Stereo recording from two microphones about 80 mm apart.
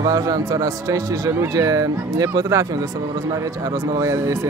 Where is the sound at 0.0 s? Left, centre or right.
Right.